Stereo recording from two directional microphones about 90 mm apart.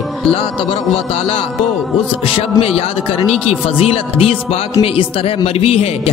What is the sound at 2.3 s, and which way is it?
Speech, 90° left.